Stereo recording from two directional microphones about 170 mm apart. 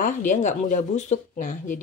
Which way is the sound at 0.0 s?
50° left (ahead or behind).